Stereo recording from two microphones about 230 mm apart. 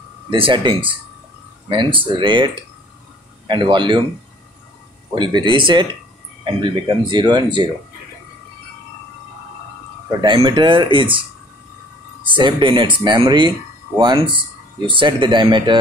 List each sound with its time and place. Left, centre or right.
0.3 s speech: right
5.1 s speech: centre
10.2 s speech: right